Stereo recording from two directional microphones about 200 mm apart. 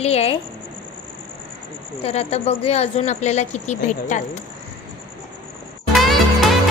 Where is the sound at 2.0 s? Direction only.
30° left (ahead or behind).